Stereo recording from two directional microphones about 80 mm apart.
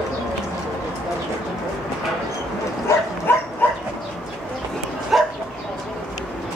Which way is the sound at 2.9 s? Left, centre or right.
Left.